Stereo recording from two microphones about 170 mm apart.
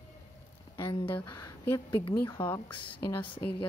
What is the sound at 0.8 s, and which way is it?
Speech, 30° left (ahead or behind).